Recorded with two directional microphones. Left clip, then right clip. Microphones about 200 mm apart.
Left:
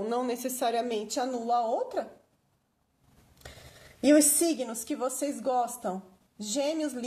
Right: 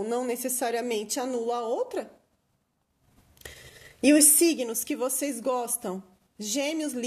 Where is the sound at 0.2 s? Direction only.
30° right (ahead or behind); by 2.0 s 50° right (ahead or behind).